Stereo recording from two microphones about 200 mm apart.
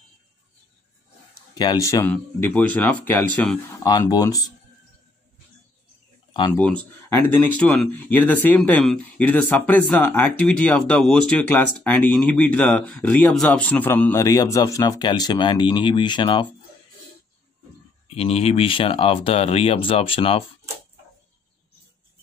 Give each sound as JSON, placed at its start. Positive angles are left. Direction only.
{"t": 1.5, "sound": "speech", "side_deg": 20}
{"t": 3.8, "sound": "speech", "side_deg": 20}
{"t": 6.5, "sound": "speech", "side_deg": 5}
{"t": 18.0, "sound": "speech", "side_deg": 30}